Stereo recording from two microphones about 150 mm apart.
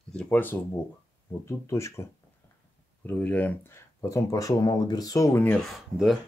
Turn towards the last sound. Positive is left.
turn(degrees=0)  # may be behind; listen again after turning